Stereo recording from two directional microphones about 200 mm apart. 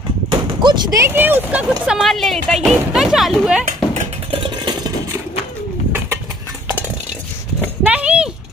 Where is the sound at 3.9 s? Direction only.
25° right (ahead or behind).